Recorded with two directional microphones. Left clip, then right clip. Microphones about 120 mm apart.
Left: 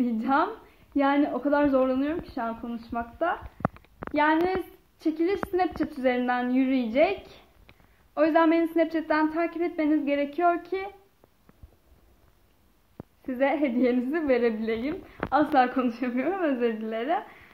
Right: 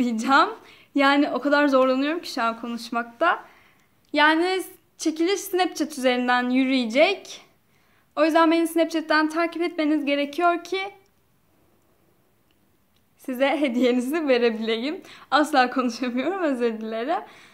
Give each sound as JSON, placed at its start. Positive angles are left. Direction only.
{"t": 0.0, "sound": "a woman's voice", "side_deg": -35}
{"t": 2.9, "sound": "speech", "side_deg": -55}
{"t": 4.1, "sound": "a woman's voice", "side_deg": -25}
{"t": 13.2, "sound": "a woman's voice", "side_deg": -40}